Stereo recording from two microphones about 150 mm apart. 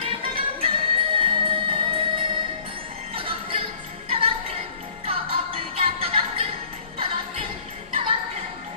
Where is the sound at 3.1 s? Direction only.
35° right (ahead or behind).